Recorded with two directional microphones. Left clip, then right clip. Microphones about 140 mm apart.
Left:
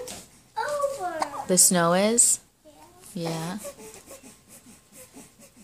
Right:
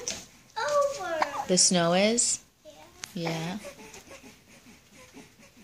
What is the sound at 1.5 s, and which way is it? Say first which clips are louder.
Speech: left 3 dB; 15° left (ahead or behind).